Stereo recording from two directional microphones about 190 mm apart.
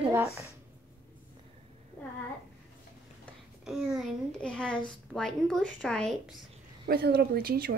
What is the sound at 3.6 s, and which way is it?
A child's voice, centre (ahead or behind).